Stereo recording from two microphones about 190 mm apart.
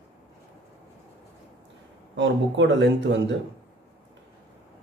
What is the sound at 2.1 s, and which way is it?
Speech, 75° right (ahead or behind).